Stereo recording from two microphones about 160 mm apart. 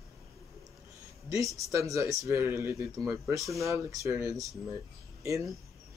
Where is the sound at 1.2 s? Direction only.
20° right (ahead or behind).